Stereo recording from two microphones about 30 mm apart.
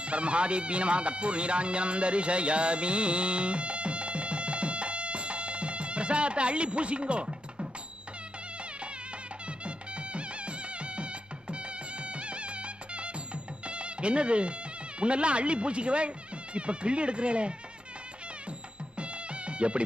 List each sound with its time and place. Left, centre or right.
0.0 s speech: right
9.7 s music: right
15.0 s speech: right
18.9 s music: right